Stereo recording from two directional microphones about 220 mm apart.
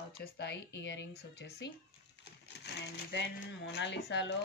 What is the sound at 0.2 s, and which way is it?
Speech, 50° left (ahead or behind).